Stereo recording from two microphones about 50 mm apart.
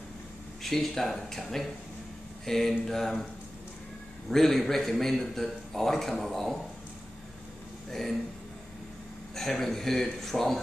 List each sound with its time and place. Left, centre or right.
0.6 s a man's voice: centre
2.4 s a sound: centre
2.9 s speech: centre
4.3 s a man's voice: centre
7.9 s speech: centre
9.3 s a man's voice: centre